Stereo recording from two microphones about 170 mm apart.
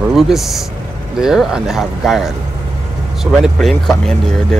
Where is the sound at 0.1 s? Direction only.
Centre (ahead or behind).